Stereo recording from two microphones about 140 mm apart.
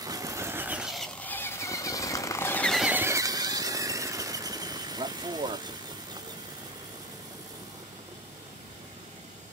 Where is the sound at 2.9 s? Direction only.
15° right (ahead or behind).